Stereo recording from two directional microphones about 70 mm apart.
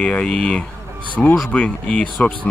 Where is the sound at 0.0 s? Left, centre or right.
Centre.